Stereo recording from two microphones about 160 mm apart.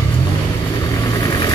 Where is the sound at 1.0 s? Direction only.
20° left (ahead or behind).